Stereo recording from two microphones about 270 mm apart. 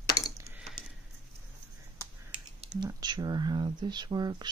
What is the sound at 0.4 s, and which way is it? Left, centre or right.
Typing, centre.